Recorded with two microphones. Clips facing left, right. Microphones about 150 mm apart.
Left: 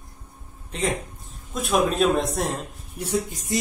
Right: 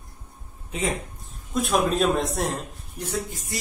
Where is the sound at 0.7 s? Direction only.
5° right (ahead or behind).